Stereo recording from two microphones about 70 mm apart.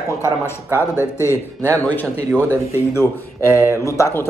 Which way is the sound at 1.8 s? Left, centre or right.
Left.